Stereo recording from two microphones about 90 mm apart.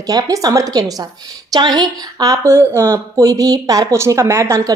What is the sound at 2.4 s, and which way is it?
Speech, 30° right (ahead or behind).